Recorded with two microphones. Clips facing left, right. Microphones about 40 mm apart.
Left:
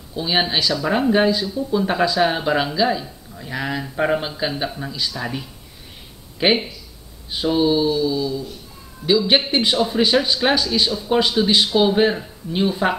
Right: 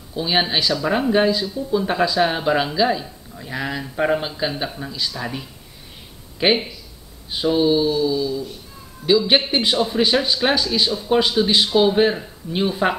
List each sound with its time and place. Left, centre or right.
0.1 s speech: centre
6.4 s speech: centre
8.2 s a sound: left
9.0 s speech: centre